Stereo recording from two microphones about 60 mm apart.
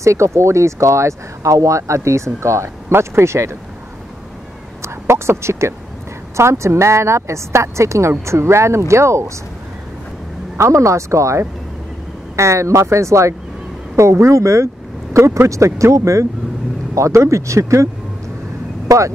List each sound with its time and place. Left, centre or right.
0.0 s a woman's voice: right
4.8 s a sound: right
6.3 s a woman's voice: right
10.6 s speech: right
18.9 s speech: right